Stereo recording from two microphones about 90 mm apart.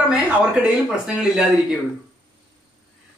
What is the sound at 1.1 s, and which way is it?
Speech, 5° right (ahead or behind).